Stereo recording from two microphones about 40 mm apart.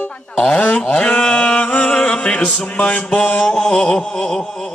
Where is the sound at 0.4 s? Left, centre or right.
Left.